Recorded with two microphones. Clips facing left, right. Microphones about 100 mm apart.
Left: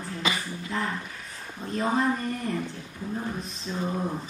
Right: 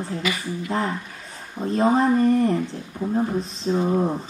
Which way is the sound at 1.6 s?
35° right (ahead or behind).